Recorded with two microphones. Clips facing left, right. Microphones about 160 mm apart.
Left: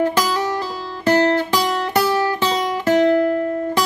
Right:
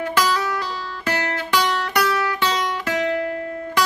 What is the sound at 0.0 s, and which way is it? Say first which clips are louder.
Music: left 3 dB; 35° left (ahead or behind).